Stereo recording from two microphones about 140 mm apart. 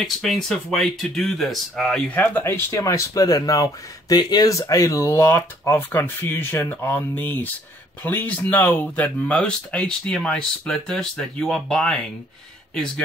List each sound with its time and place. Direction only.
0.0 s speech: centre (ahead or behind)